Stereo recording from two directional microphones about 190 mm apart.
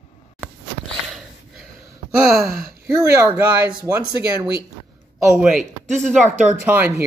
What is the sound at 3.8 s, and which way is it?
Speech, 15° right (ahead or behind).